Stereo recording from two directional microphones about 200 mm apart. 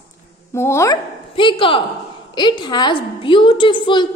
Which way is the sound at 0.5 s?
15° left (ahead or behind).